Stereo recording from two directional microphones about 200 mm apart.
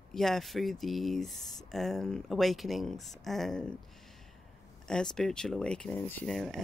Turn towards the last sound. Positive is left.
turn(degrees=0)  # may be behind; listen again after turning